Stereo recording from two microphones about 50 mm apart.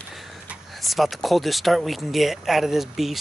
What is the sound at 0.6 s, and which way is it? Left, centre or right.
Speech, centre.